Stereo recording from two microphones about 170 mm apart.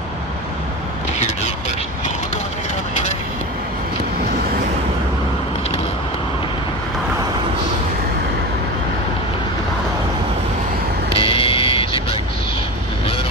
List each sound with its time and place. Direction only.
11.1 s vehicle: 30° left (ahead or behind)